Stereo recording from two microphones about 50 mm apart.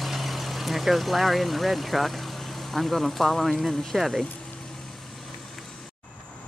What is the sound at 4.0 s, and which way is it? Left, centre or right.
Speech, centre.